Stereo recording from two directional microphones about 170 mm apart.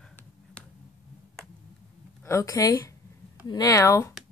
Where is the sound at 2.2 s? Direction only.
20° left (ahead or behind).